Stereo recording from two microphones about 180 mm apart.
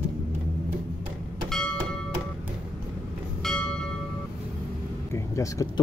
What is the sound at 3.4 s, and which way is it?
Train, 5° left (ahead or behind).